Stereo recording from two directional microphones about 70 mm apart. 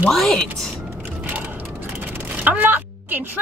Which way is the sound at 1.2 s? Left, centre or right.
Right.